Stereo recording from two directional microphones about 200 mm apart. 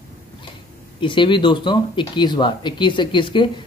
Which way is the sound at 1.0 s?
25° left (ahead or behind).